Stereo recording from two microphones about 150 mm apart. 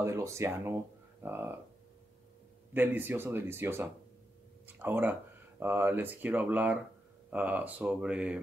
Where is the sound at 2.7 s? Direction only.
15° right (ahead or behind).